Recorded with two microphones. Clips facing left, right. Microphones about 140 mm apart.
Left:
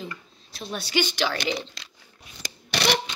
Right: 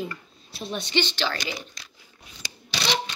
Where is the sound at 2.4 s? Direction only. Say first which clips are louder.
Left 5 dB; 60° left (ahead or behind).